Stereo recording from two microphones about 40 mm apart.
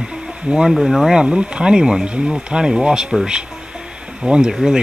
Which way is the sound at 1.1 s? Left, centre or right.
Centre.